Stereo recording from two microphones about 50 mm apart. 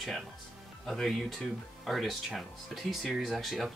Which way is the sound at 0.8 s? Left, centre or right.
Centre.